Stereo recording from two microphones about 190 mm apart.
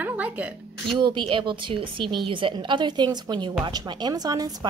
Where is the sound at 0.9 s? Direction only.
25° right (ahead or behind).